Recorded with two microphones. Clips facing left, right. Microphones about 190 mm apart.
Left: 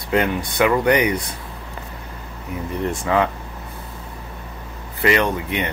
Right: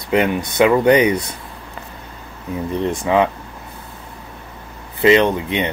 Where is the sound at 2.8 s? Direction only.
20° right (ahead or behind).